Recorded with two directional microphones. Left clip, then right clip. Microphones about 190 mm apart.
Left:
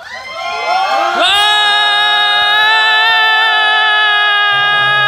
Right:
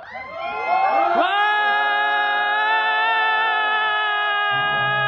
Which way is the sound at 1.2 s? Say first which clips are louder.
Left 8 dB; 10° left (ahead or behind).